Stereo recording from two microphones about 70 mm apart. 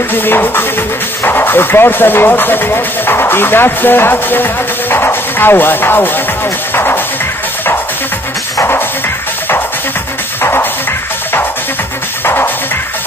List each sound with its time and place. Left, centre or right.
0.1 s music: left
1.2 s speech: left
6.7 s music: left
10.4 s music: left